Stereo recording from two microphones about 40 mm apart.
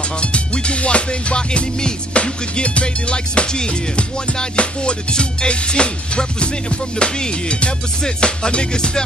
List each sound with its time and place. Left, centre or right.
0.2 s music: left